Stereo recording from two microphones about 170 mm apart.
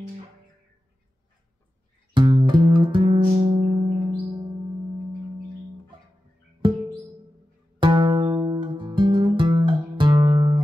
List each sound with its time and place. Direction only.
2.1 s music: 30° right (ahead or behind)
7.8 s guitar: 25° right (ahead or behind)